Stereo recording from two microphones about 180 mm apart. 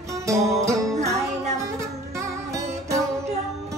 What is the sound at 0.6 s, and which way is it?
Music, 15° right (ahead or behind).